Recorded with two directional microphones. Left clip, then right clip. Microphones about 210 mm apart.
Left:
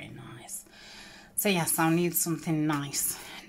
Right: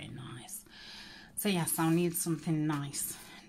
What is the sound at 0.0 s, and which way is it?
A woman's voice, 5° right (ahead or behind).